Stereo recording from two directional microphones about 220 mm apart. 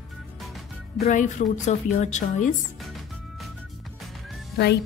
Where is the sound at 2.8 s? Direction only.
Centre (ahead or behind).